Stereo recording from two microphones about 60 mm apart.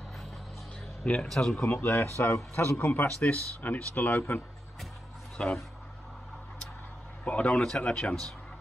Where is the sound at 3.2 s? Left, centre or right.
Left.